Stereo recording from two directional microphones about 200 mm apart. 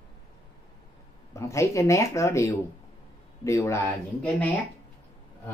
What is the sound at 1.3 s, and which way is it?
Speech, 15° left (ahead or behind).